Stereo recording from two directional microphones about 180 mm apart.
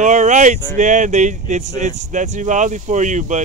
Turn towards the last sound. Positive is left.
turn(degrees=-40)  # may be behind; listen again after turning